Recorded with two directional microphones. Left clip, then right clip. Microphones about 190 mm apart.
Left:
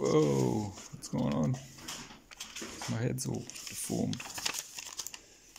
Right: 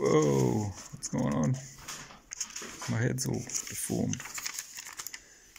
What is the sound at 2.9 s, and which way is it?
Speech, centre (ahead or behind).